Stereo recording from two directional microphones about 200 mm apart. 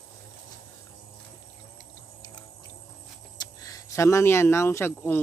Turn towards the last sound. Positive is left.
turn(degrees=10)  # may be behind; listen again after turning